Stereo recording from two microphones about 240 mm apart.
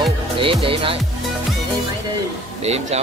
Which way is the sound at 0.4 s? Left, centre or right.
Right.